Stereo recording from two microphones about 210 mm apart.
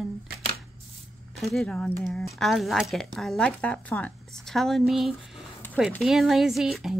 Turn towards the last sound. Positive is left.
turn(degrees=0)  # may be behind; listen again after turning